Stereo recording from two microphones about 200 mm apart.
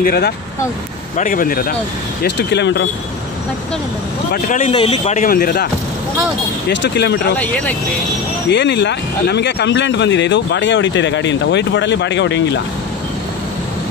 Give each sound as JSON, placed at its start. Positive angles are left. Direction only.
{"t": 0.0, "sound": "speech", "side_deg": 50}
{"t": 2.2, "sound": "speech", "side_deg": 60}
{"t": 4.3, "sound": "speech", "side_deg": 40}
{"t": 4.7, "sound": "speech", "side_deg": 30}
{"t": 6.7, "sound": "speech", "side_deg": 60}
{"t": 7.3, "sound": "speech", "side_deg": 10}
{"t": 8.5, "sound": "speech", "side_deg": 60}